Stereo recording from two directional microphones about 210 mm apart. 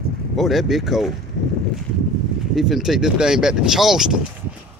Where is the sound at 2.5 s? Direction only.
Centre (ahead or behind).